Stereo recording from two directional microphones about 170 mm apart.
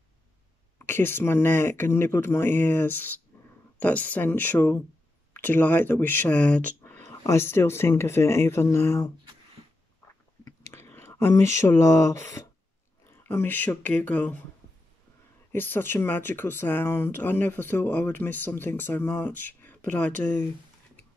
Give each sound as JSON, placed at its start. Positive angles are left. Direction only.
{"t": 0.7, "sound": "speech", "side_deg": 15}
{"t": 10.7, "sound": "speech", "side_deg": 15}
{"t": 15.5, "sound": "speech", "side_deg": 10}
{"t": 19.6, "sound": "a sound", "side_deg": 10}